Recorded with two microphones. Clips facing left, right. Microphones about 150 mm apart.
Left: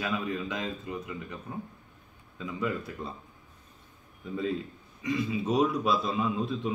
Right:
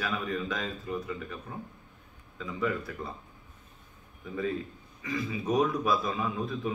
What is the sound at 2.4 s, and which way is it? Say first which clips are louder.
Speech: right 1 dB; 20° left (ahead or behind).